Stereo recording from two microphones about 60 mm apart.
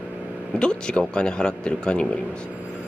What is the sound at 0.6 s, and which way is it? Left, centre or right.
Speech, centre.